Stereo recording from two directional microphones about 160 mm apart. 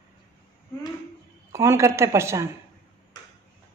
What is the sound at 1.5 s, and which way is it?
Speech, 20° right (ahead or behind).